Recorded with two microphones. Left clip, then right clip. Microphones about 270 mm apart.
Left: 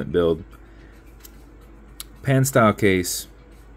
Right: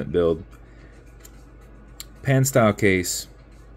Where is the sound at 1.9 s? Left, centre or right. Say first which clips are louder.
Left 1 dB; centre.